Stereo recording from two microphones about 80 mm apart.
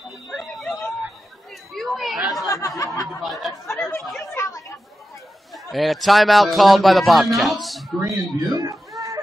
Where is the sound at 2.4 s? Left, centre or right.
Left.